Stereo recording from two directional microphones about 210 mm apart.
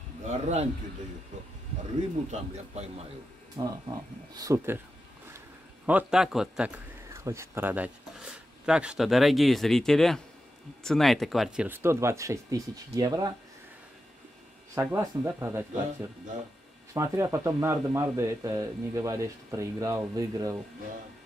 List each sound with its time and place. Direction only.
0.3 s speech: 30° right (ahead or behind)
2.3 s speech: 30° right (ahead or behind)
3.6 s speech: 15° right (ahead or behind)
5.9 s a man's voice: 5° right (ahead or behind)
14.8 s speech: 10° right (ahead or behind)
16.9 s speech: 15° right (ahead or behind)